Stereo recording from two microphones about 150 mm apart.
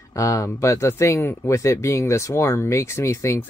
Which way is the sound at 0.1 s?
20° left (ahead or behind).